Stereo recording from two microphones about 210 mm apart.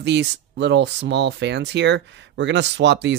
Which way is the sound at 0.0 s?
55° right (ahead or behind).